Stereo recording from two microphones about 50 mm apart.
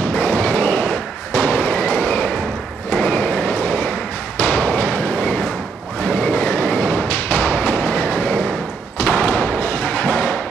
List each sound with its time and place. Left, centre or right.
0.2 s vehicle: left
0.6 s a sound: left
2.9 s vehicle: left
4.5 s thump: left
6.0 s a sound: left
7.1 s thump: left
9.7 s music: left